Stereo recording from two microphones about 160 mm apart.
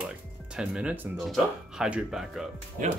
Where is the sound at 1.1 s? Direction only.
Centre (ahead or behind).